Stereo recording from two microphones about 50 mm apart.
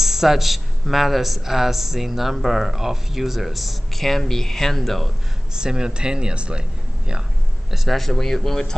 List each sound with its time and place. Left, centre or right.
0.0 s speech: centre
5.5 s speech: centre
7.7 s speech: centre
8.0 s speech: centre